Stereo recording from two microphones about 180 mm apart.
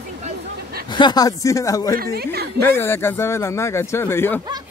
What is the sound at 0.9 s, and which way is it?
Speech, 25° left (ahead or behind).